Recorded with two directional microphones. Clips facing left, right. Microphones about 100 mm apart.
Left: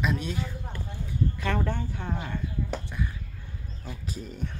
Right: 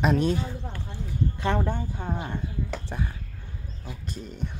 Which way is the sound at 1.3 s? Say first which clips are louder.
Right 3 dB; 25° right (ahead or behind).